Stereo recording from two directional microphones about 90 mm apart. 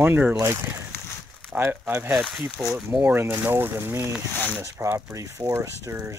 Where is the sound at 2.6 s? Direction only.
Centre (ahead or behind).